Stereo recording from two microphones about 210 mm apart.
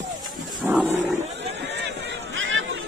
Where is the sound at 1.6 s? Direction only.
55° right (ahead or behind).